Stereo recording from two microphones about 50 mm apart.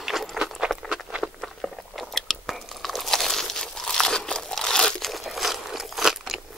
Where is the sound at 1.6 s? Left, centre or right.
Centre.